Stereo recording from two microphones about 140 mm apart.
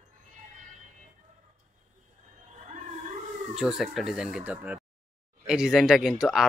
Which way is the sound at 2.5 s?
60° right (ahead or behind).